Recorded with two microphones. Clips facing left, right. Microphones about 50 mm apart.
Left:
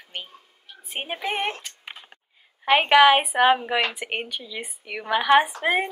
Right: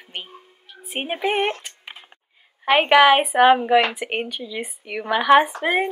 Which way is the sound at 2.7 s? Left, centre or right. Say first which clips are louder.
Right 2 dB; centre.